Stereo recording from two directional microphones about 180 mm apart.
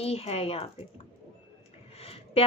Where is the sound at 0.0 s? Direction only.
35° left (ahead or behind).